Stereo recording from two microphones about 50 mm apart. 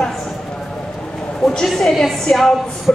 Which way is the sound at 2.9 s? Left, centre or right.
Left.